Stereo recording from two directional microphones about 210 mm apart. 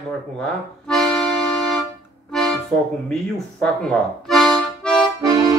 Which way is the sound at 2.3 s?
Centre (ahead or behind).